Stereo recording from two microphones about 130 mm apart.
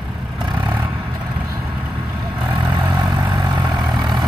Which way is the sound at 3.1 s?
30° right (ahead or behind).